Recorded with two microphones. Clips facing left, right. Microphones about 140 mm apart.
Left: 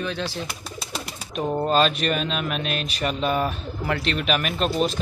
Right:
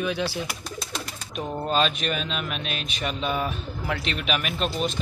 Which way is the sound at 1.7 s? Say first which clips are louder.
Left 2 dB; centre (ahead or behind).